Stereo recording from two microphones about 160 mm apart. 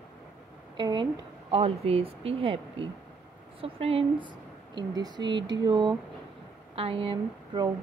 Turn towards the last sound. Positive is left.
turn(degrees=-35)  # may be behind; listen again after turning